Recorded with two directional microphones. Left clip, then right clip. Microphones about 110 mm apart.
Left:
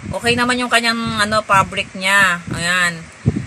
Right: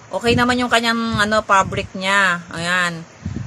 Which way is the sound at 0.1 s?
40° right (ahead or behind).